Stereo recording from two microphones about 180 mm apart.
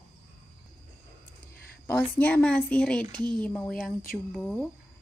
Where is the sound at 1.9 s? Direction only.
10° left (ahead or behind).